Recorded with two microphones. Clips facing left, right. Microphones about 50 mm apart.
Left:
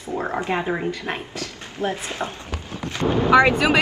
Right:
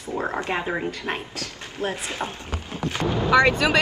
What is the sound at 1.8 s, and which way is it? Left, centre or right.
Speech, right.